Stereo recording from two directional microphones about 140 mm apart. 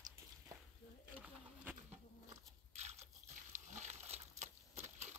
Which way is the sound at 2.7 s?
50° right (ahead or behind).